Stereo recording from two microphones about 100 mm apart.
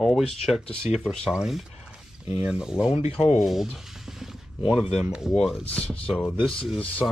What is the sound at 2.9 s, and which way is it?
Speech, 80° left.